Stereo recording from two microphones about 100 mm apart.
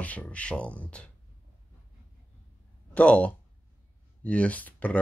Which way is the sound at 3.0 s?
10° left (ahead or behind).